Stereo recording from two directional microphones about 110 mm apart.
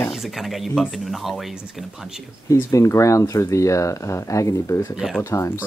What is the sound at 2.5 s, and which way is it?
Speech, 25° left (ahead or behind).